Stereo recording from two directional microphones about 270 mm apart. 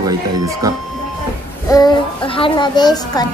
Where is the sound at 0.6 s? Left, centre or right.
Centre.